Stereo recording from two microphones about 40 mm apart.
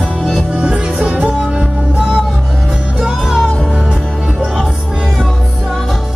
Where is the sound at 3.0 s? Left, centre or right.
Centre.